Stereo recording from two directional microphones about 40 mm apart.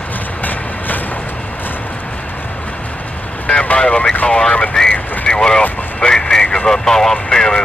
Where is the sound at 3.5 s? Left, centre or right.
Left.